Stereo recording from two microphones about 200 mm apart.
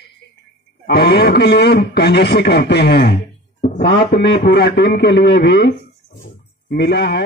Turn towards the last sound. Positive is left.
turn(degrees=60)  # may be behind; listen again after turning